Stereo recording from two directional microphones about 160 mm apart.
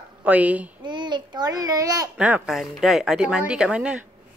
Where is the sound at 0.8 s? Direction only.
30° right (ahead or behind).